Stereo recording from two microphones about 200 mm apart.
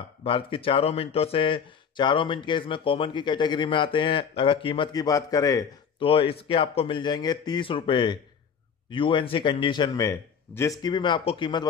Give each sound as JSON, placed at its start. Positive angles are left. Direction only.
{"t": 0.2, "sound": "speech", "side_deg": 25}